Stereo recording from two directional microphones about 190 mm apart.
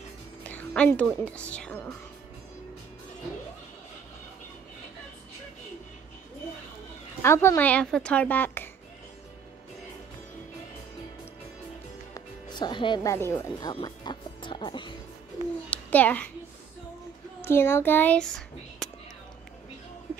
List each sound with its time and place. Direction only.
0.4 s speech: 5° left (ahead or behind)
7.2 s speech: 15° left (ahead or behind)
12.1 s speech: 25° left (ahead or behind)
15.7 s a sound: 10° left (ahead or behind)
17.4 s a child's voice: 10° left (ahead or behind)